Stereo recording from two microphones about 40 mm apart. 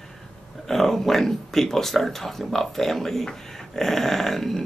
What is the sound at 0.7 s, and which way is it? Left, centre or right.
Speech, centre.